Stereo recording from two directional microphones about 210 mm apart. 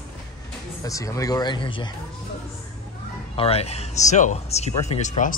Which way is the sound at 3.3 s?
30° left (ahead or behind).